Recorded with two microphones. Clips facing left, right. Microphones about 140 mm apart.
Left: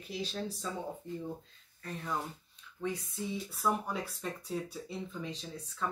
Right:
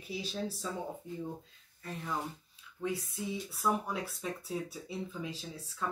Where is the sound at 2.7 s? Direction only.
Centre (ahead or behind).